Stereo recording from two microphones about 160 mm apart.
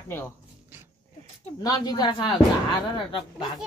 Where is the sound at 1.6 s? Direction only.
25° left (ahead or behind).